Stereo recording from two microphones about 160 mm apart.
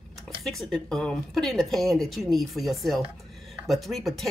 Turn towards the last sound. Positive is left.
turn(degrees=0)  # may be behind; listen again after turning